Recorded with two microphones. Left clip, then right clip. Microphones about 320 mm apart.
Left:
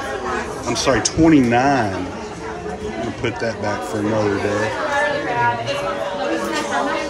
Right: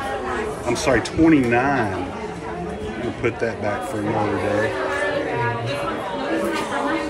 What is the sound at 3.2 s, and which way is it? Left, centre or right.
Speech, centre.